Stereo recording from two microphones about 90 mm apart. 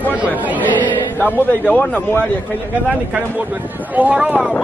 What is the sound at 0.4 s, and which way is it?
Speech, 20° right (ahead or behind).